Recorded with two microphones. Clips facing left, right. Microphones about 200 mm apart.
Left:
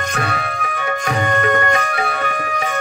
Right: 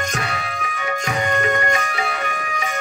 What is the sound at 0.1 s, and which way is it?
Music, 60° left (ahead or behind).